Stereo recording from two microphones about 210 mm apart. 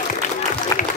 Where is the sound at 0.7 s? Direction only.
15° left (ahead or behind).